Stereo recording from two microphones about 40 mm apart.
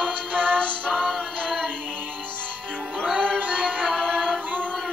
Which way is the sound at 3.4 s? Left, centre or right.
Right.